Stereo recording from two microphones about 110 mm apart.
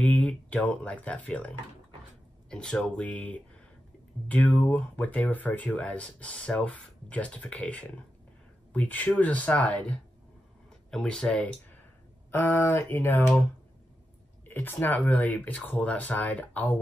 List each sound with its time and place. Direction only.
0.0 s speech: 15° left (ahead or behind)
2.5 s speech: 5° left (ahead or behind)
14.4 s speech: 20° left (ahead or behind)